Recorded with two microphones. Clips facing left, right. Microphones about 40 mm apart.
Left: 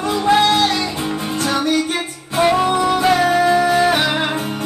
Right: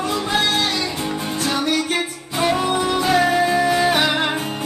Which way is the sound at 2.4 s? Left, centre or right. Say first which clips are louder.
Left 4 dB; centre.